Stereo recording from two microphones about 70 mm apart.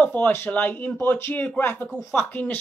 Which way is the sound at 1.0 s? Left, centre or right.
Left.